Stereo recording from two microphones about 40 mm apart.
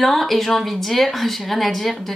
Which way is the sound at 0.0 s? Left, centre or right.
Centre.